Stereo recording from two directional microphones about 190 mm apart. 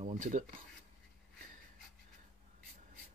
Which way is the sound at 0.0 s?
40° right (ahead or behind).